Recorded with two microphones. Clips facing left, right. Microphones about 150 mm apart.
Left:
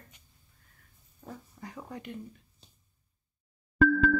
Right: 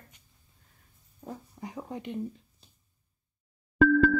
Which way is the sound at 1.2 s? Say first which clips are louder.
Right 4 dB; 20° right (ahead or behind).